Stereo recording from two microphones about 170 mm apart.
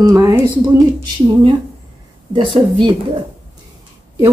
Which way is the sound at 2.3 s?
30° right (ahead or behind).